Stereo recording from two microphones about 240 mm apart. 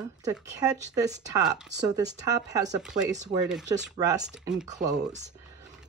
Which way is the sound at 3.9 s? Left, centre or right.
Centre.